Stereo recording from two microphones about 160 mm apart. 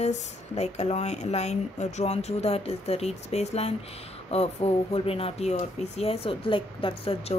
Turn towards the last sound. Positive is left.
turn(degrees=35)  # may be behind; listen again after turning